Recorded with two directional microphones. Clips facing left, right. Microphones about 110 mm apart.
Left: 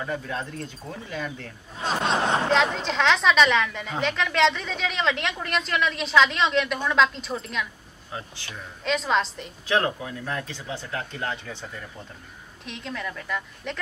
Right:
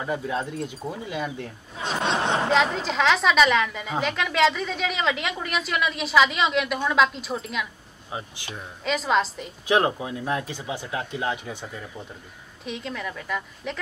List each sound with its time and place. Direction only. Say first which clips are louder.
0.0 s speech: right 3 dB; 10° right (ahead or behind)
2.5 s a woman's voice: right 1 dB; centre (ahead or behind)
8.1 s speech: right 2 dB; 15° right (ahead or behind)
8.8 s a woman's voice: right 1 dB; 5° right (ahead or behind)
9.7 s speech: right 3 dB; 20° right (ahead or behind)
12.6 s a woman's voice: right 2 dB; centre (ahead or behind)